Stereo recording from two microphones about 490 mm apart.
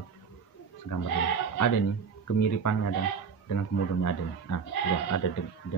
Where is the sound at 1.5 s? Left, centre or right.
Left.